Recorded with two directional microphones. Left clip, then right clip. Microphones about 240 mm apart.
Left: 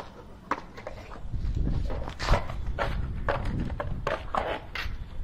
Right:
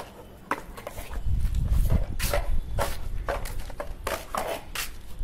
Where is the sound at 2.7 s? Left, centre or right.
Centre.